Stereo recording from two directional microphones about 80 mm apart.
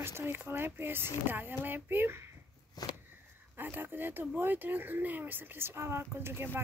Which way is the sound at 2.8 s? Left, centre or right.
Left.